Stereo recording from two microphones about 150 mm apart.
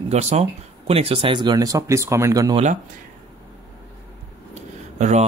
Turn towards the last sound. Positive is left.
turn(degrees=-50)  # may be behind; listen again after turning